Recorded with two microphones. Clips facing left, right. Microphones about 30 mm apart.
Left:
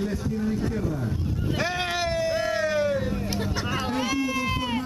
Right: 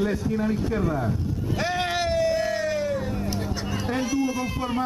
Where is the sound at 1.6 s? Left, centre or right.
Centre.